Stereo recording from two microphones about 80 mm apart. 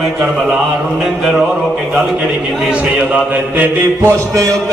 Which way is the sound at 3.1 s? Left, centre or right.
Right.